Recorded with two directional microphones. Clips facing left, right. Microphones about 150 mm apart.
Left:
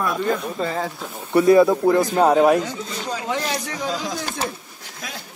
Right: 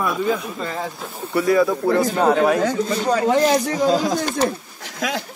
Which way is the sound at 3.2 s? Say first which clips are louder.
Right 9 dB; 40° right (ahead or behind).